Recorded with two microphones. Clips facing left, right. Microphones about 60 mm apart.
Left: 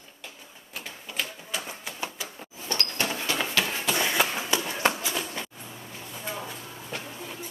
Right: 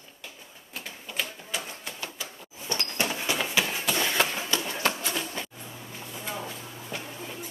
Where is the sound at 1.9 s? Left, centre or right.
Left.